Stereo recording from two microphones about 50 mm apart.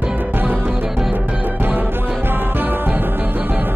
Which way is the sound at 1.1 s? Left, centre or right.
Right.